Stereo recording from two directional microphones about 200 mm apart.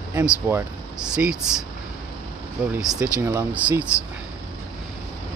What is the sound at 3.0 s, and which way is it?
Speech, 15° right (ahead or behind).